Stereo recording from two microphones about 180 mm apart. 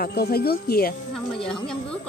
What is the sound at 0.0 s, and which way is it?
Speech, 60° left (ahead or behind).